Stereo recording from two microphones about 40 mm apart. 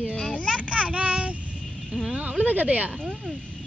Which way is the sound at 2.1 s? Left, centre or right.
Right.